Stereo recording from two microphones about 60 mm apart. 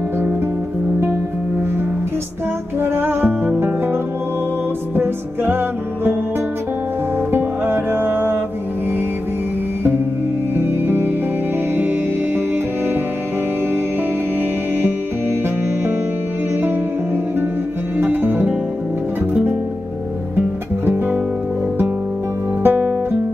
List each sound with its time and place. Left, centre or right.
2.8 s music: right
7.3 s music: right
10.5 s music: right
17.9 s music: right
22.6 s guitar: right